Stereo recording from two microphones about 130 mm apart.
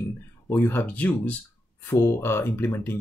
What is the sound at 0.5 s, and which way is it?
Speech, 15° left (ahead or behind).